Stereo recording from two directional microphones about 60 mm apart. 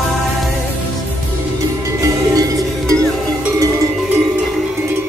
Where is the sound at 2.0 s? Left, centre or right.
Right.